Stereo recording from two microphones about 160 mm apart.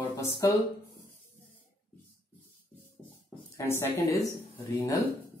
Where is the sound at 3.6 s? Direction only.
15° left (ahead or behind).